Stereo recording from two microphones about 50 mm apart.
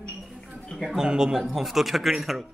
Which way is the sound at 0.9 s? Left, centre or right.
Centre.